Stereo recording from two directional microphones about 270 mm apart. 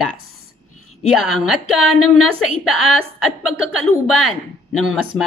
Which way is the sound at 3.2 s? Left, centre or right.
Left.